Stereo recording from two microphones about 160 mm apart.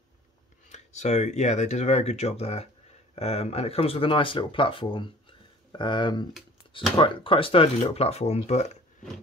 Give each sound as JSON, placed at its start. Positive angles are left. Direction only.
{"t": 0.7, "sound": "speech", "side_deg": 45}